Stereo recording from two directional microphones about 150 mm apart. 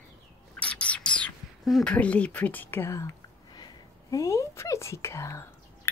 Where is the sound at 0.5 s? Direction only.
10° left (ahead or behind).